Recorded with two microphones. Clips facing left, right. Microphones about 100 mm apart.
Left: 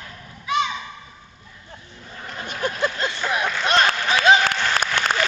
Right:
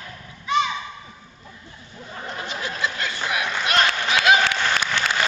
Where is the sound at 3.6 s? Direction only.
35° left (ahead or behind).